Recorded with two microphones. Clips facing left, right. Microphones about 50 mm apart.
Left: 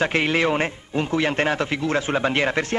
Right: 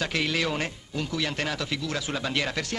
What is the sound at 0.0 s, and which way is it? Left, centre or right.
A man's voice, left.